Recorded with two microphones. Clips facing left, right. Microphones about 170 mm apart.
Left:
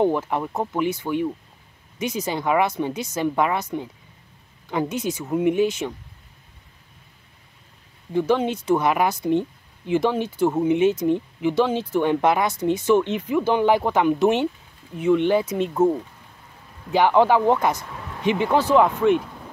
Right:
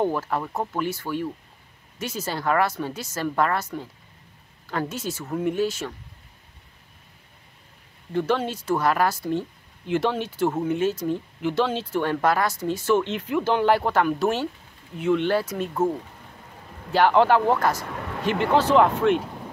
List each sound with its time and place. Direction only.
0.0 s speech: 20° left (ahead or behind)
4.6 s speech: 15° left (ahead or behind)
8.1 s speech: 10° left (ahead or behind)
16.9 s speech: 10° left (ahead or behind)